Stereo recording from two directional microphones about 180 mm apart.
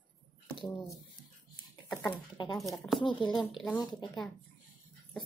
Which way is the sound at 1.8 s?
5° left (ahead or behind).